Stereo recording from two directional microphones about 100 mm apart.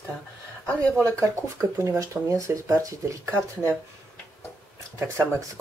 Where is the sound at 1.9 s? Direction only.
30° right (ahead or behind).